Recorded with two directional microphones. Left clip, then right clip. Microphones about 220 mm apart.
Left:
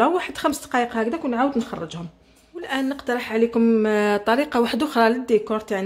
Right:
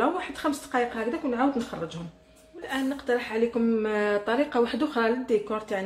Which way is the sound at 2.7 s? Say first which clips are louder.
Left 3 dB; 50° left (ahead or behind).